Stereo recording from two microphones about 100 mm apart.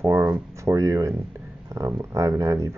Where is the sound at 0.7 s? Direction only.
30° right (ahead or behind).